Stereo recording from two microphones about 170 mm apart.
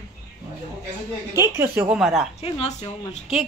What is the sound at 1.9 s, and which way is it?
Speech, 5° right (ahead or behind).